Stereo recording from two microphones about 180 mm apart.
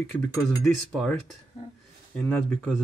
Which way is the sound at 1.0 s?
5° left (ahead or behind).